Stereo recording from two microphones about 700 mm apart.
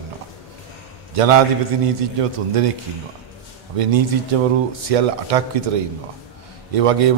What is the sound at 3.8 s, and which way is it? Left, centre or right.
Speech, right.